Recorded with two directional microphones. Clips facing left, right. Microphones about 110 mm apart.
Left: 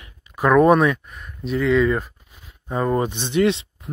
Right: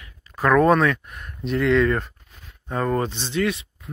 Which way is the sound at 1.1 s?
Centre (ahead or behind).